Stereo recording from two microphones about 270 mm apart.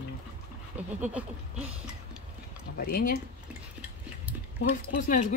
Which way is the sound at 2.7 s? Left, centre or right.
Left.